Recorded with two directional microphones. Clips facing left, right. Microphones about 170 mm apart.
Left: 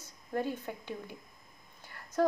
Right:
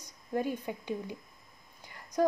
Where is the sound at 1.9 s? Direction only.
15° right (ahead or behind).